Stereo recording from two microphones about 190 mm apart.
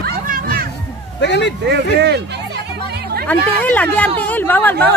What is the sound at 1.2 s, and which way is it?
Speech, 65° left (ahead or behind).